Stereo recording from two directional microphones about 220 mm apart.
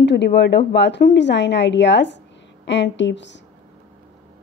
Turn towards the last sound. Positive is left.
turn(degrees=55)  # may be behind; listen again after turning